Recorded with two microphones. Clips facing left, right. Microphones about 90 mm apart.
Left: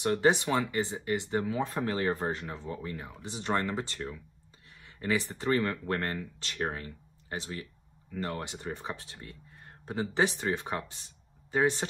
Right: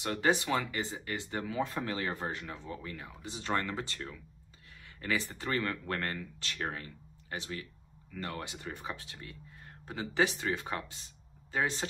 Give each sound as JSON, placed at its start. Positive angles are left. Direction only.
{"t": 0.0, "sound": "speech", "side_deg": 25}